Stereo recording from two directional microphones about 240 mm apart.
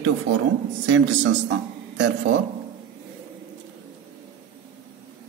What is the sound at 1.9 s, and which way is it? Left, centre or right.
Speech, right.